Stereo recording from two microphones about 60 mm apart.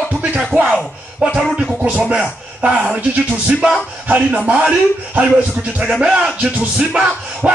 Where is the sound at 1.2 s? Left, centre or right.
Centre.